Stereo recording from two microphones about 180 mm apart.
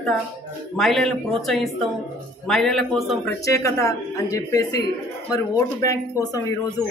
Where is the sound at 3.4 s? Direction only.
15° left (ahead or behind).